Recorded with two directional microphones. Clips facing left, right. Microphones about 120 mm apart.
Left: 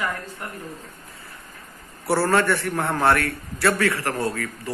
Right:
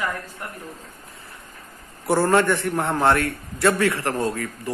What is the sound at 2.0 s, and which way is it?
A man's voice, 15° right (ahead or behind).